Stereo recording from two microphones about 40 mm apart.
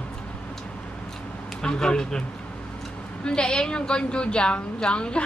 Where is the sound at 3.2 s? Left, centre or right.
Left.